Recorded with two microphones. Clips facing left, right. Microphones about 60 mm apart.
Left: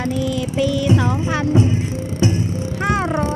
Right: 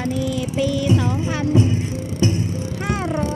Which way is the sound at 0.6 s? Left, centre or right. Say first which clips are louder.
Left 2 dB; left.